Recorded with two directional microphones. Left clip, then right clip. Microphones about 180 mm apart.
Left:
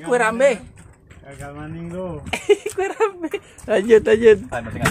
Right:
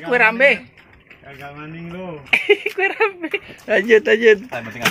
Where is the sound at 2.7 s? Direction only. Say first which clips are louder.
Right 2 dB; 10° left (ahead or behind).